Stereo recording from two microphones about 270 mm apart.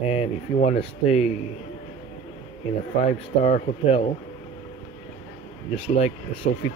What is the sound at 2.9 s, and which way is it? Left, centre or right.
Speech, left.